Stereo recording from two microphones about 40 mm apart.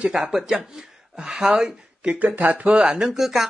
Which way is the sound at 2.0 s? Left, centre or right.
Right.